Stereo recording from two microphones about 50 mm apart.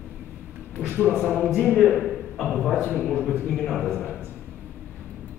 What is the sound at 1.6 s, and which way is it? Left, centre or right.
Speech, left.